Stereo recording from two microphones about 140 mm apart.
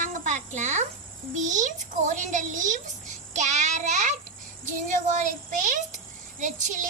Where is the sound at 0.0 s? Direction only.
65° right (ahead or behind).